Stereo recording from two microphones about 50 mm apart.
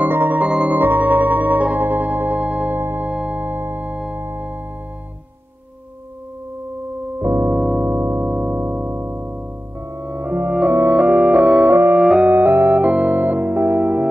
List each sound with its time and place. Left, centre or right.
0.0 s music: right
2.7 s music: right
3.1 s music: right
3.4 s music: right
7.2 s organ: right
7.5 s organ: centre
7.8 s music: right
8.3 s music: right
10.7 s organ: right
11.0 s organ: right
12.0 s music: right
12.3 s keyboard: right
12.8 s music: right